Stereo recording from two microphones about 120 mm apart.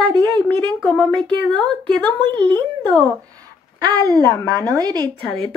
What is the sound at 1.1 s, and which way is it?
Speech, 5° left (ahead or behind).